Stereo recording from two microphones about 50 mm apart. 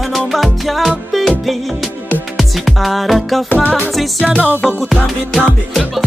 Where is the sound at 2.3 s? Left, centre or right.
Centre.